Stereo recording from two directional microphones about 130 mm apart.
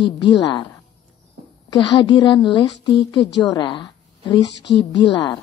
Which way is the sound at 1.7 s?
40° left (ahead or behind).